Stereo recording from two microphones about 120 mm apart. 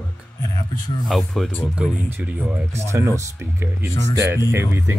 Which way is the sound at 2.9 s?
25° right (ahead or behind).